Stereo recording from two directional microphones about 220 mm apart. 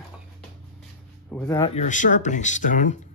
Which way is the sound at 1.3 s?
5° left (ahead or behind).